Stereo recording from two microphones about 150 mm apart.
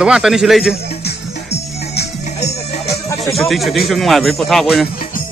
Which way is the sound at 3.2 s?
Centre (ahead or behind).